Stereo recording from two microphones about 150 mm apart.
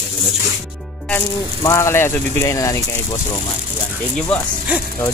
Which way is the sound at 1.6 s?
20° left (ahead or behind).